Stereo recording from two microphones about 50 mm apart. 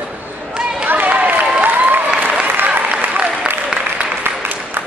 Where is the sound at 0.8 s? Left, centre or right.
Right.